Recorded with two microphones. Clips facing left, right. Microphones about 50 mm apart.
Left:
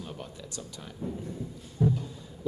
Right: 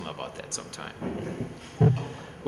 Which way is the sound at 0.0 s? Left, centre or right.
Right.